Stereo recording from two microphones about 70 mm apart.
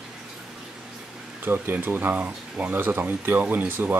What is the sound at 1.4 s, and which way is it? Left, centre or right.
Speech, right.